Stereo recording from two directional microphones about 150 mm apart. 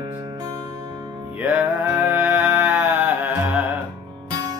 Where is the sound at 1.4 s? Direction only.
10° right (ahead or behind).